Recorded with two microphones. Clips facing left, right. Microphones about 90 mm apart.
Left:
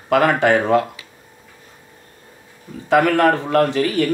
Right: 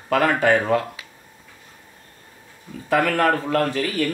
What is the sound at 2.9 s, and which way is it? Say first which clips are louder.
Speech: left 4 dB; 20° left (ahead or behind).